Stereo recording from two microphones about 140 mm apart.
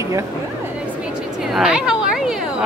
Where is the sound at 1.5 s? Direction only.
5° right (ahead or behind).